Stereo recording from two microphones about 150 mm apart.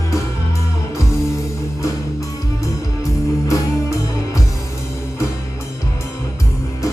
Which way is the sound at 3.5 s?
20° left (ahead or behind).